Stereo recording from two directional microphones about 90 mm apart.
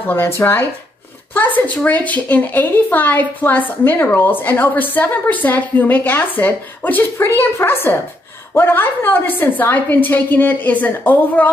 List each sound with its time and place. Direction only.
0.0 s a woman's voice: 25° left (ahead or behind)